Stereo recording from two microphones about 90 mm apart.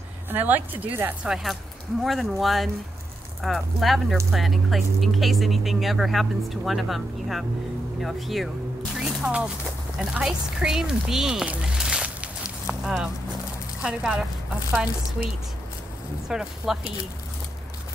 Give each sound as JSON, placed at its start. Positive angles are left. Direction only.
{"t": 0.3, "sound": "speech", "side_deg": -20}
{"t": 1.2, "sound": "speech", "side_deg": -5}
{"t": 8.9, "sound": "music", "side_deg": -5}
{"t": 10.1, "sound": "speech", "side_deg": -5}
{"t": 12.6, "sound": "a sound", "side_deg": -5}
{"t": 13.8, "sound": "speech", "side_deg": -10}